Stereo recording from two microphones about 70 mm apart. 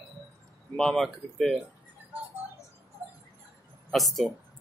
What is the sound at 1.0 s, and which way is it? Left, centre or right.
Speech, centre.